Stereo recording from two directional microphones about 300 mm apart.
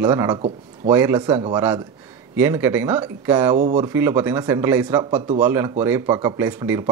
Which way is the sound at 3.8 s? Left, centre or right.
Centre.